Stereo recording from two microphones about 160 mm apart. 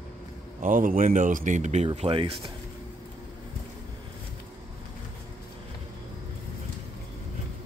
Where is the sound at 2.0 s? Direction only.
35° right (ahead or behind).